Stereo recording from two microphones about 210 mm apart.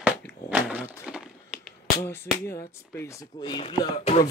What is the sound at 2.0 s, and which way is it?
Speech, 10° left (ahead or behind).